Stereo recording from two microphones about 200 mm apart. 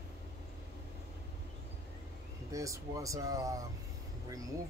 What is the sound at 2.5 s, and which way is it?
Speech, 15° right (ahead or behind).